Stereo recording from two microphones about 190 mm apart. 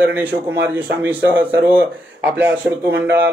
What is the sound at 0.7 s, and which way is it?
Speech, 10° right (ahead or behind).